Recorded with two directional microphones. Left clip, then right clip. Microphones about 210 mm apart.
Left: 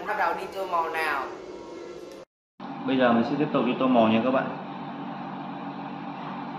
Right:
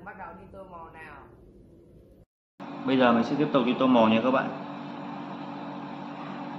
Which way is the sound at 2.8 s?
25° right (ahead or behind).